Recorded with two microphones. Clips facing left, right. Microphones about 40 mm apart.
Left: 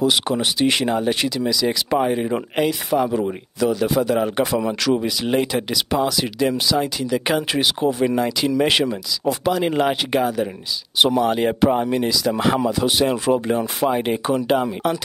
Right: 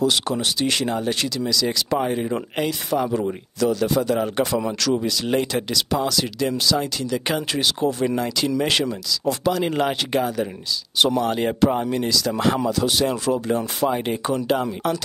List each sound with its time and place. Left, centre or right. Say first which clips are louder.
0.0 s speech: left 2 dB; centre